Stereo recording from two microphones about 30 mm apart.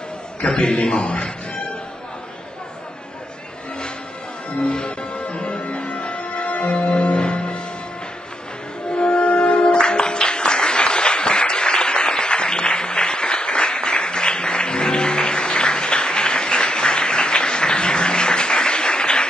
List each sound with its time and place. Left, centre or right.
0.4 s a man's voice: left
4.6 s music: left
8.9 s music: left